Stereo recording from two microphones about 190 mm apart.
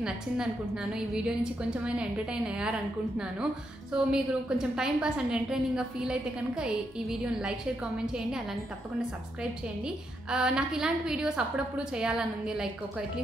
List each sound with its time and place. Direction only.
0.9 s a woman's voice: 5° right (ahead or behind)
3.9 s a woman's voice: 5° right (ahead or behind)
9.4 s a woman's voice: 5° right (ahead or behind)